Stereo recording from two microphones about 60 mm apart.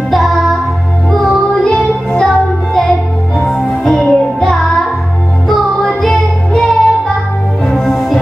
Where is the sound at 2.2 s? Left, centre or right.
Centre.